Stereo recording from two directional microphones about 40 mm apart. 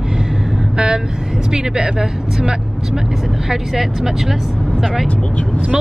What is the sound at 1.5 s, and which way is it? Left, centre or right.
Speech, centre.